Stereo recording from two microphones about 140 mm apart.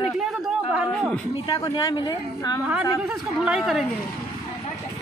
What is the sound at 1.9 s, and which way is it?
Speech, 30° left (ahead or behind).